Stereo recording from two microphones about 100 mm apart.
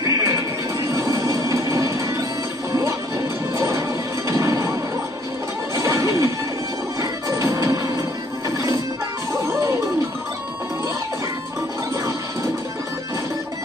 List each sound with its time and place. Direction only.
0.0 s music: 35° right (ahead or behind)
3.5 s music: 30° right (ahead or behind)
5.8 s music: 30° right (ahead or behind)
9.3 s music: 30° right (ahead or behind)